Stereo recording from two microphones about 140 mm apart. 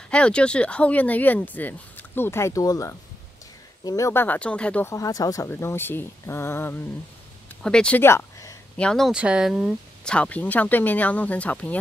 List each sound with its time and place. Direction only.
0.1 s speech: 5° left (ahead or behind)
4.8 s speech: 25° left (ahead or behind)
8.7 s speech: 5° left (ahead or behind)
9.1 s speech: 5° right (ahead or behind)
10.0 s speech: 10° left (ahead or behind)